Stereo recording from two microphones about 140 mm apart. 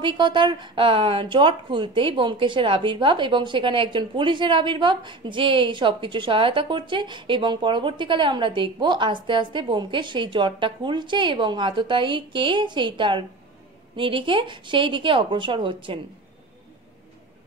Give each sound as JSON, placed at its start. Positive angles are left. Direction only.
{"t": 0.0, "sound": "speech", "side_deg": -35}